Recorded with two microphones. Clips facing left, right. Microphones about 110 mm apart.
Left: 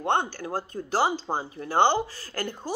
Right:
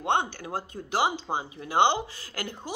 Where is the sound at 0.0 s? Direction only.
15° right (ahead or behind).